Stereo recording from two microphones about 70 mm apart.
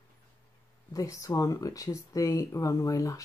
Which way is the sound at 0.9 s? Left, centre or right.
Left.